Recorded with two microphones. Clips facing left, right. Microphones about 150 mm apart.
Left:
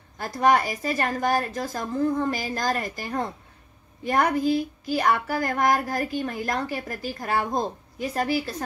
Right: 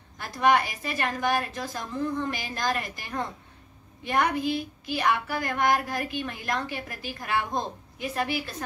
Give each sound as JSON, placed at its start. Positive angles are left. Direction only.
{"t": 0.2, "sound": "speech", "side_deg": 40}